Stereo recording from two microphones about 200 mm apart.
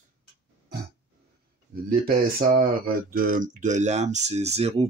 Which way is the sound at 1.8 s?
50° right (ahead or behind).